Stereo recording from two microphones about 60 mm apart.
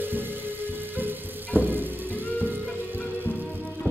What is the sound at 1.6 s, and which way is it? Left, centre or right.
Music, right.